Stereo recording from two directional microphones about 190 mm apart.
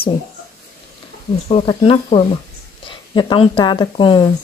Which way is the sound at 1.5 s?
30° left (ahead or behind).